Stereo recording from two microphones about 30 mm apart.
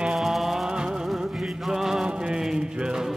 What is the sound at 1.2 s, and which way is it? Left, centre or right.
Music, centre.